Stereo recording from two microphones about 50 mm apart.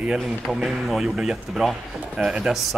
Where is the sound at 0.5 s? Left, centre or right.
Centre.